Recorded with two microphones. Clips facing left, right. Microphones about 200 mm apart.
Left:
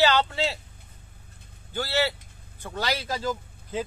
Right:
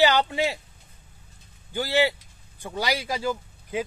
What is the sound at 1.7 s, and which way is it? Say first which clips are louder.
Speech: right 3 dB; 15° right (ahead or behind).